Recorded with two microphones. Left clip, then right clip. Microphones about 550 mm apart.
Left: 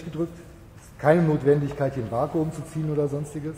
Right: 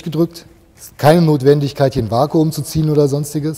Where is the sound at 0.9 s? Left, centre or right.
Right.